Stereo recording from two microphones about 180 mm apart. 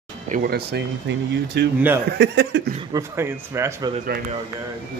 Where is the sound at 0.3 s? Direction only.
60° right (ahead or behind).